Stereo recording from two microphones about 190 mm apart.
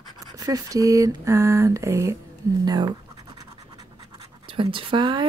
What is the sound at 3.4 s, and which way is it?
Scratch, 25° right (ahead or behind).